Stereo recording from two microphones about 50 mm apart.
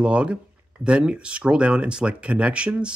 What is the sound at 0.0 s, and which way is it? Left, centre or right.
Speech, right.